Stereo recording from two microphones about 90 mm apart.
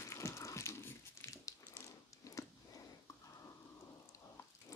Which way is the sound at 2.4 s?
35° left (ahead or behind).